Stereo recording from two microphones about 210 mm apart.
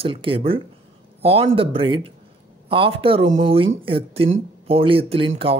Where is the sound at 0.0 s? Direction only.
25° right (ahead or behind).